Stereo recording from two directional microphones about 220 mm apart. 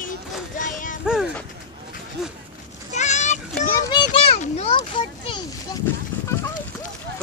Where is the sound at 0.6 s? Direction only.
35° left (ahead or behind).